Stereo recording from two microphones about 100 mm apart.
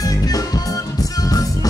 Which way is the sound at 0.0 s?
35° left (ahead or behind).